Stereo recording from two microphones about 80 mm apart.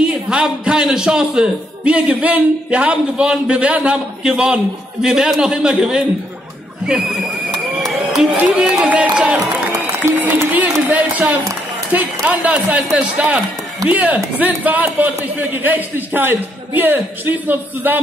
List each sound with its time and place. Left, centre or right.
0.0 s a man's voice: centre
8.5 s a man's voice: centre
9.7 s a sound: right
11.9 s a man's voice: centre